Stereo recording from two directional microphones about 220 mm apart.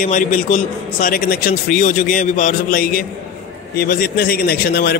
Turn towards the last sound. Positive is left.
turn(degrees=45)  # may be behind; listen again after turning